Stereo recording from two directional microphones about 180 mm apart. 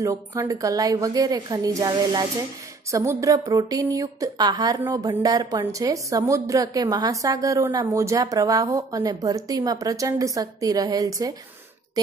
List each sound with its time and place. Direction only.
0.0 s a woman's voice: 20° right (ahead or behind)